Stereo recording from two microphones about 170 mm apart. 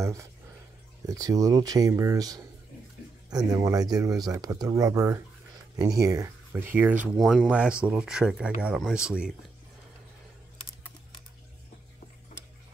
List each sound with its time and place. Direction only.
0.0 s speech: 15° right (ahead or behind)